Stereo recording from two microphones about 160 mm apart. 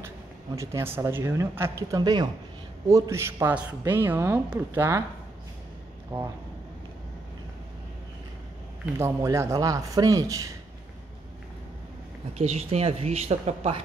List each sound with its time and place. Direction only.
0.6 s a woman's voice: 15° right (ahead or behind)
6.1 s speech: 20° right (ahead or behind)
8.9 s speech: 20° right (ahead or behind)
12.4 s speech: 40° right (ahead or behind)